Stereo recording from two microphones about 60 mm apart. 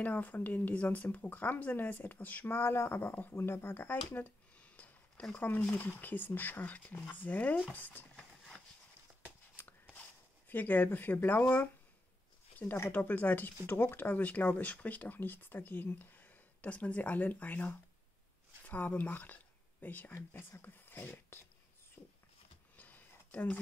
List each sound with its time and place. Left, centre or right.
0.0 s speech: left
3.3 s a sound: left
5.4 s speech: left
8.2 s horse: centre
10.5 s speech: left
12.6 s speech: centre
12.9 s speech: left
13.7 s speech: left
20.2 s speech: left
22.0 s a sound: left
22.8 s a sound: left